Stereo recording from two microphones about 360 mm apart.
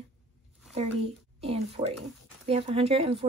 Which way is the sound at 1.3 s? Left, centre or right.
Centre.